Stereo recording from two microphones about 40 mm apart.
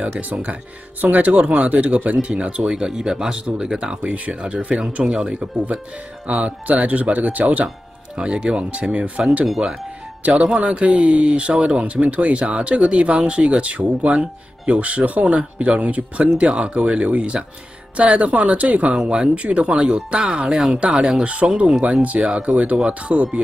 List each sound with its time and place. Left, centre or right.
0.2 s speech: right
2.7 s speech: centre
6.2 s speech: right
8.2 s speech: right
10.5 s speech: right
18.9 s speech: right
20.4 s speech: centre
20.8 s speech: right